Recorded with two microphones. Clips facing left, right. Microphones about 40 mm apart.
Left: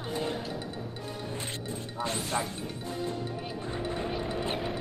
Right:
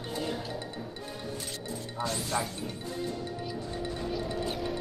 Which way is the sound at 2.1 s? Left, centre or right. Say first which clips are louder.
Even; left.